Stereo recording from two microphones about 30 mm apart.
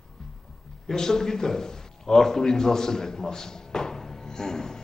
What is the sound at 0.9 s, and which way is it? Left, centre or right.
A man's voice, centre.